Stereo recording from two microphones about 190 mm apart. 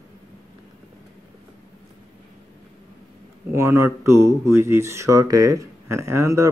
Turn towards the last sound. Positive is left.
turn(degrees=-15)  # may be behind; listen again after turning